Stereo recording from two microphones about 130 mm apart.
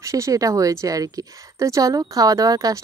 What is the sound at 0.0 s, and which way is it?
Speech, 25° right (ahead or behind).